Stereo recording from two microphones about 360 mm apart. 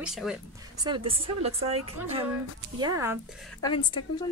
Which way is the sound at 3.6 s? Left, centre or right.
Centre.